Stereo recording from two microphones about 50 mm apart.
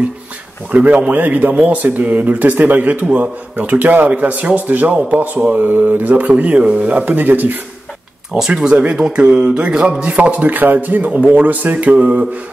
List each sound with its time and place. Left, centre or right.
0.7 s speech: right
8.4 s speech: centre
9.2 s a sound: right
10.1 s speech: right
11.1 s speech: right